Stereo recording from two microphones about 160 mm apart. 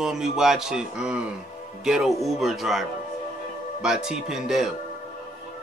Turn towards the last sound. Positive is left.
turn(degrees=0)  # may be behind; listen again after turning